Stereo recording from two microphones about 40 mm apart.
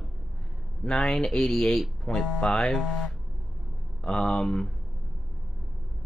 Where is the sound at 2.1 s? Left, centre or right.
Left.